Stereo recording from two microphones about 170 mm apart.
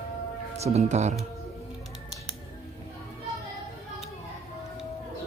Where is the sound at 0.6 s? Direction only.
40° right (ahead or behind).